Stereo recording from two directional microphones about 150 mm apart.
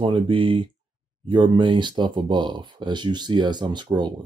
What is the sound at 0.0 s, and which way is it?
Speech, 35° right (ahead or behind).